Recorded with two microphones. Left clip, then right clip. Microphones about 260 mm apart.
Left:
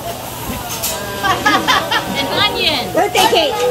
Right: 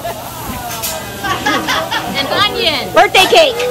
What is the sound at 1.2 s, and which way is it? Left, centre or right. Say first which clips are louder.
Music: left 2 dB; centre.